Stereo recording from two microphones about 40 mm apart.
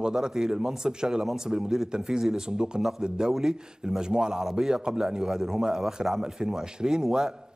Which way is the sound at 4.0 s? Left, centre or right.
Centre.